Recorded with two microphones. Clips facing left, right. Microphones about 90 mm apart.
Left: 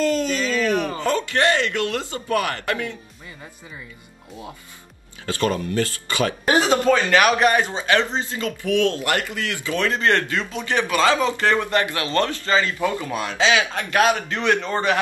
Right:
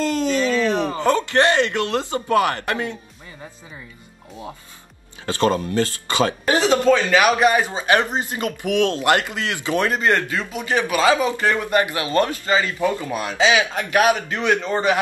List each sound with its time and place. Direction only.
0.0 s a sound: 20° right (ahead or behind)
1.6 s speech: 20° right (ahead or behind)
5.2 s speech: 25° right (ahead or behind)
6.5 s speech: 15° left (ahead or behind)
7.1 s speech: 10° right (ahead or behind)